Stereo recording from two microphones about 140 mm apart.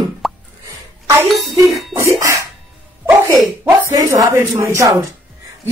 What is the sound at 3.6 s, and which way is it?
A man's voice, 20° right (ahead or behind).